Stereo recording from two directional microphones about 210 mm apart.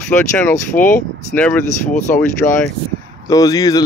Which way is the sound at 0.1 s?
10° left (ahead or behind).